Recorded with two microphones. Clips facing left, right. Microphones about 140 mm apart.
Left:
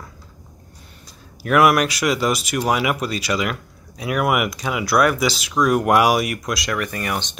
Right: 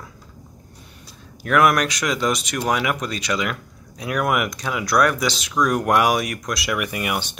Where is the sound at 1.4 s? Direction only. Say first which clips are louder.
Left 2 dB; 5° left (ahead or behind).